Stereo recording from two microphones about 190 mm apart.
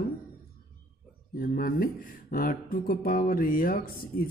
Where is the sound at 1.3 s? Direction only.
50° left (ahead or behind).